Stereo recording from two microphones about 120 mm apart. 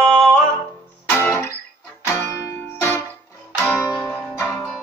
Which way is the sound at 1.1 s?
20° left (ahead or behind).